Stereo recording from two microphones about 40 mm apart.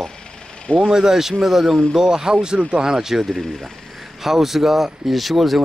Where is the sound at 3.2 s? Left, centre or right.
Centre.